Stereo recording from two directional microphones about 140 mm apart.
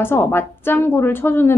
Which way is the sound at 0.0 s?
15° left (ahead or behind).